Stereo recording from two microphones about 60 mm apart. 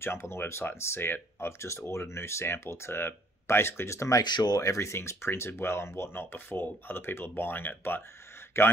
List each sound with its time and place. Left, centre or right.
0.0 s speech: left
4.4 s speech: left
8.5 s speech: left